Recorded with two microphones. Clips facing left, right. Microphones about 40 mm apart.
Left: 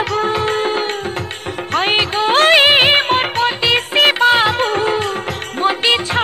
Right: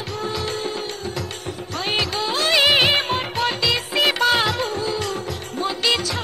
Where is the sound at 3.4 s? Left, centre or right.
Left.